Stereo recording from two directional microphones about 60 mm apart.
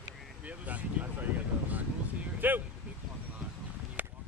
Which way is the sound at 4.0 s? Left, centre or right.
Right.